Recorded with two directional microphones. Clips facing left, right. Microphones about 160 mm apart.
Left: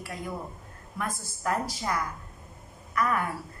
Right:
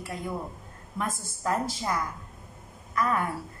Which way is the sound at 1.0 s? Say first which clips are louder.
Right 2 dB; 20° right (ahead or behind).